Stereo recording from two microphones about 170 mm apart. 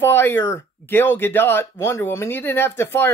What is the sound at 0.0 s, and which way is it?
Speech, 15° left (ahead or behind).